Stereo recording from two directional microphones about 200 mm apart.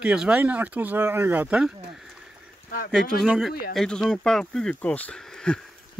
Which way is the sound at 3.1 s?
Centre (ahead or behind).